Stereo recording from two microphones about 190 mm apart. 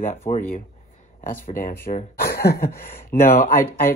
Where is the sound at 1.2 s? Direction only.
45° left (ahead or behind).